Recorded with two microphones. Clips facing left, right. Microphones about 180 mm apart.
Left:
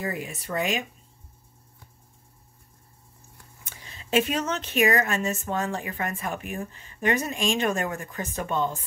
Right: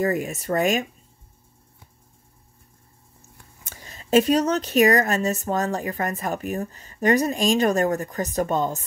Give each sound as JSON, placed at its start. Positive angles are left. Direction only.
{"t": 0.0, "sound": "speech", "side_deg": -45}
{"t": 3.6, "sound": "a woman's voice", "side_deg": -45}